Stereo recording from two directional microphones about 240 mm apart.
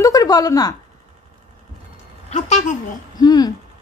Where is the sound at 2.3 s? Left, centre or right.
Left.